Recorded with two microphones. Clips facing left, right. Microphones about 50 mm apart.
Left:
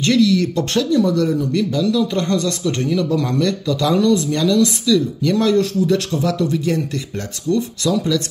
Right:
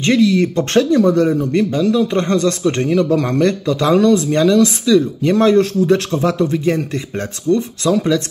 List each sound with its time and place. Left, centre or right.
0.0 s speech: right